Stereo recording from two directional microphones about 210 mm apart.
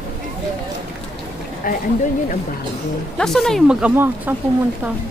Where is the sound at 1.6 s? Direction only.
40° left (ahead or behind).